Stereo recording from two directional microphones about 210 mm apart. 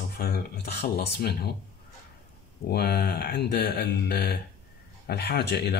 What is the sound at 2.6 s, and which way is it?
Speech, 50° left (ahead or behind).